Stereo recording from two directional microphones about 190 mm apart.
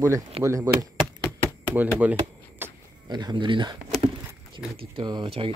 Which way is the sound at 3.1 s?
20° right (ahead or behind).